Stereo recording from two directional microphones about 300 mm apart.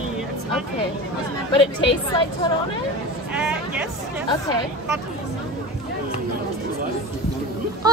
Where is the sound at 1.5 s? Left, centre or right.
Centre.